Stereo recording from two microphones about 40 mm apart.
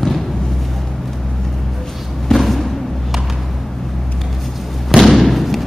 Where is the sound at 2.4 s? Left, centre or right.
Centre.